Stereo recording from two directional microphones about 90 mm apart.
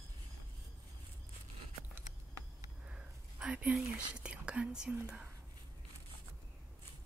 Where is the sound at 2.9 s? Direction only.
10° right (ahead or behind).